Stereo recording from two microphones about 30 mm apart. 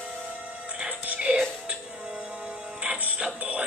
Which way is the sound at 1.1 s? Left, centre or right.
Right.